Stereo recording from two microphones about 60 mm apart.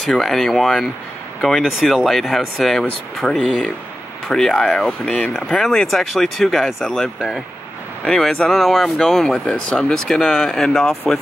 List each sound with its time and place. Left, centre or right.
0.0 s speech: centre
3.3 s speech: centre
4.7 s speech: centre
5.3 s speech: centre